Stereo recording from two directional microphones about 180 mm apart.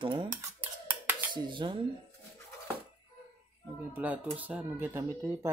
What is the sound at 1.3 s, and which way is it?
Speech, 25° right (ahead or behind).